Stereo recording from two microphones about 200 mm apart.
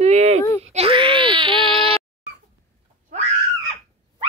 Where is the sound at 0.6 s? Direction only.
30° right (ahead or behind).